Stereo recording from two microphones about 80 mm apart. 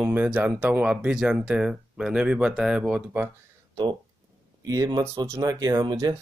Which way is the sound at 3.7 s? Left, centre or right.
Right.